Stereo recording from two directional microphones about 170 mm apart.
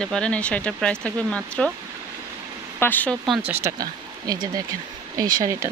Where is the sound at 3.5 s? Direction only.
20° right (ahead or behind).